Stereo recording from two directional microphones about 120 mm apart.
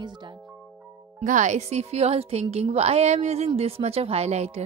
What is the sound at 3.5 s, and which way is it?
Speech, 55° right (ahead or behind).